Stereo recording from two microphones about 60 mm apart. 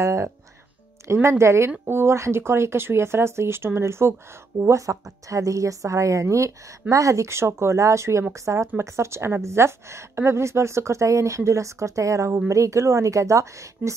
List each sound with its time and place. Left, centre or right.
0.0 s a woman's voice: right
4.6 s a woman's voice: right